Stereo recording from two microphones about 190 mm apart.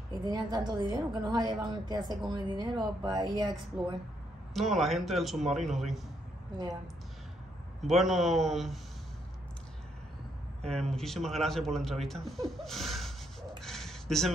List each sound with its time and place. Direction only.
0.2 s a woman's voice: 20° right (ahead or behind)
4.6 s speech: centre (ahead or behind)
7.8 s speech: centre (ahead or behind)
10.7 s speech: centre (ahead or behind)
13.6 s a sound: centre (ahead or behind)